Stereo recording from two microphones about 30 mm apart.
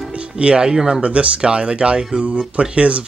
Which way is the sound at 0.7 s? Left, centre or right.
Right.